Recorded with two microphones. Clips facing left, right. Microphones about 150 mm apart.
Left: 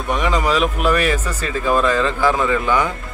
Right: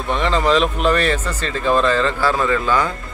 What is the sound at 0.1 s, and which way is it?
Speech, 10° left (ahead or behind).